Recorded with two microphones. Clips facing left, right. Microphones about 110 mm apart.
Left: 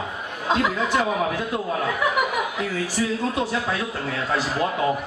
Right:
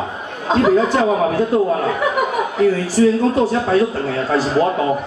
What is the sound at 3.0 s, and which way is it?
Speech, 40° right (ahead or behind).